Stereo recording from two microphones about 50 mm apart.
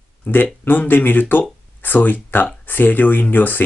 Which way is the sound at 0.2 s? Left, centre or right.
Left.